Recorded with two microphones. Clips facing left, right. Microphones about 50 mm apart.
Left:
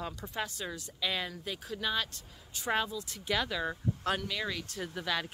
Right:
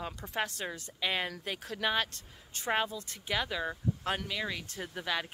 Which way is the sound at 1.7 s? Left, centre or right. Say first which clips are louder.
Right 3 dB; right.